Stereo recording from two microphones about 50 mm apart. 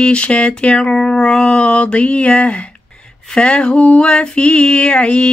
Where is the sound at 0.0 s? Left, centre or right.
Left.